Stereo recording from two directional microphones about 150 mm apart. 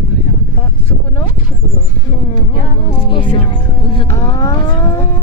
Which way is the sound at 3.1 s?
35° left (ahead or behind).